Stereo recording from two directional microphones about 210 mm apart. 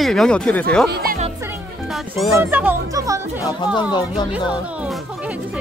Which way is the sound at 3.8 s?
20° left (ahead or behind).